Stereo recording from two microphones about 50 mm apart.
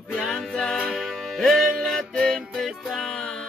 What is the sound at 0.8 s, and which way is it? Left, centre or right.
Music, centre.